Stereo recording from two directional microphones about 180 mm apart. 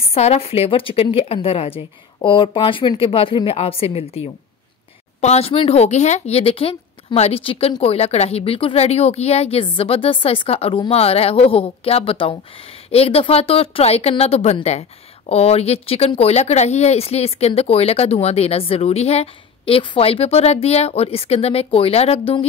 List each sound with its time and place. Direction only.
0.1 s speech: 35° left (ahead or behind)